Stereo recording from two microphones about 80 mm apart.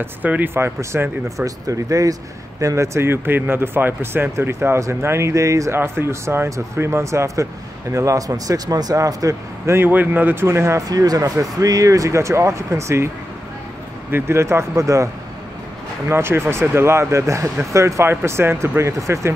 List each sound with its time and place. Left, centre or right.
0.0 s speech: right
1.4 s speech: right
9.8 s speech: right
10.9 s speech: right
14.1 s speech: right
16.1 s speech: right